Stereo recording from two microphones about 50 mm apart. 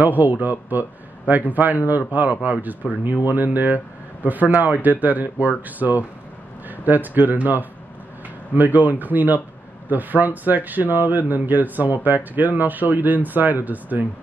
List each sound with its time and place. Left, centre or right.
0.0 s speech: right